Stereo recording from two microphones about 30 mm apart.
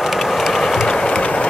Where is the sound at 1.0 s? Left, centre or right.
Left.